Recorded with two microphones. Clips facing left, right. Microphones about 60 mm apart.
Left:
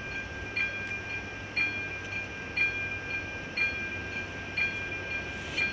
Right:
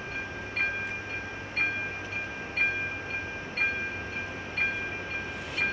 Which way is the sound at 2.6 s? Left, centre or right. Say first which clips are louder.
Right 2 dB; centre.